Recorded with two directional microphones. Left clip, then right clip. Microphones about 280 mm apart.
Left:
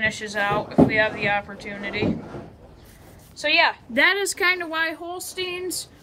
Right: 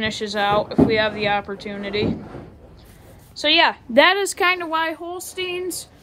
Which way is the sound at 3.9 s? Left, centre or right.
Centre.